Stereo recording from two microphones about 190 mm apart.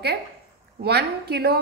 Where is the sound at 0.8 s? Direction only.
55° right (ahead or behind).